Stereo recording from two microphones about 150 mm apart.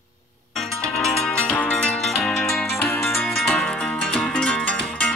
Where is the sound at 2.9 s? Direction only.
15° left (ahead or behind).